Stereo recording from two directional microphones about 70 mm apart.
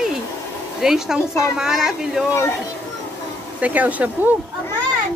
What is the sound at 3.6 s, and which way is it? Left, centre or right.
Speech, right.